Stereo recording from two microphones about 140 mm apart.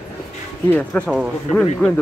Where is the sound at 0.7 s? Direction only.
10° left (ahead or behind).